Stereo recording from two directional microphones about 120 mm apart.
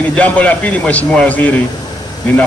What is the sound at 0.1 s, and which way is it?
A man's voice, 10° left (ahead or behind).